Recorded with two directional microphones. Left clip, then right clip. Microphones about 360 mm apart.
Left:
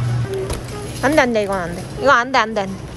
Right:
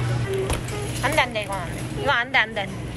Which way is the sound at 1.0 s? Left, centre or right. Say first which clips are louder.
Left 7 dB; left.